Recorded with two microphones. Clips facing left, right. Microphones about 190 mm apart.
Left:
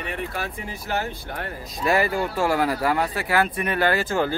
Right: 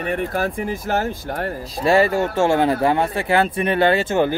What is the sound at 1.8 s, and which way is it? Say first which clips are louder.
Speech: right 5 dB; 25° right (ahead or behind).